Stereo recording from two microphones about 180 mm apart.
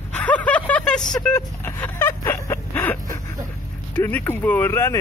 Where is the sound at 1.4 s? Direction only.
15° left (ahead or behind).